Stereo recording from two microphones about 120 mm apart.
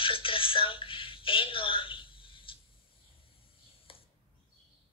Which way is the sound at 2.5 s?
45° left (ahead or behind).